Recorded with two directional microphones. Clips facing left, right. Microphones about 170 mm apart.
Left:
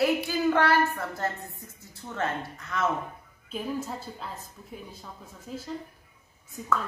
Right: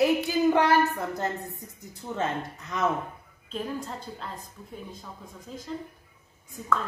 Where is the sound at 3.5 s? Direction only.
5° left (ahead or behind).